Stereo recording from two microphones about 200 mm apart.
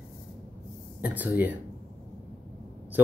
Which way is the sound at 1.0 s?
10° right (ahead or behind).